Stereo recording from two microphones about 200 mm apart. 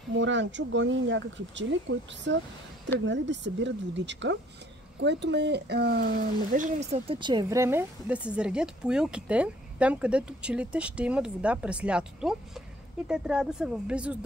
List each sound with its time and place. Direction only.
0.2 s speech: 65° right (ahead or behind); by 14.1 s 5° right (ahead or behind)